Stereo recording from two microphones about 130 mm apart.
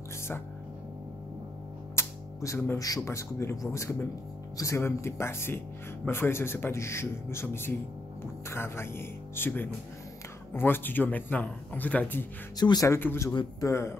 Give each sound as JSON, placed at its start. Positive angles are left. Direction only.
{"t": 2.0, "sound": "music", "side_deg": 20}
{"t": 2.8, "sound": "a man's voice", "side_deg": 25}
{"t": 12.5, "sound": "a man's voice", "side_deg": 30}
{"t": 13.3, "sound": "speech", "side_deg": 35}
{"t": 13.7, "sound": "a man's voice", "side_deg": 20}